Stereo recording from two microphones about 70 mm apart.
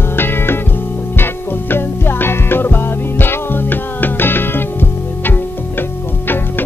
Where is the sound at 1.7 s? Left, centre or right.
Left.